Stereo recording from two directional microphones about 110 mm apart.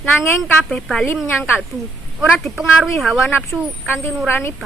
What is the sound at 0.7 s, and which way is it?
Speech, 5° left (ahead or behind).